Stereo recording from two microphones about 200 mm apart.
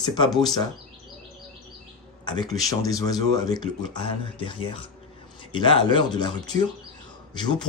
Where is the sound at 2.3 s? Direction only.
20° left (ahead or behind).